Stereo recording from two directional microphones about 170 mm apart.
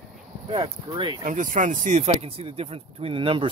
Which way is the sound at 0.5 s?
25° right (ahead or behind).